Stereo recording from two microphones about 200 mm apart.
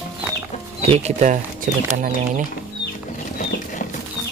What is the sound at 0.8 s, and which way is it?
Speech, 30° right (ahead or behind).